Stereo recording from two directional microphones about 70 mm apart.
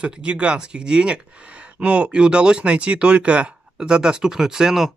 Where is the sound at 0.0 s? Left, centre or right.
Centre.